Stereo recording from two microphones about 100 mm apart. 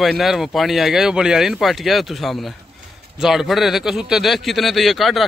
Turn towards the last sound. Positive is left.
turn(degrees=0)  # may be behind; listen again after turning